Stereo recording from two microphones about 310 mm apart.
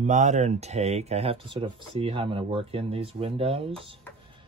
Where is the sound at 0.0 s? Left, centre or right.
Right.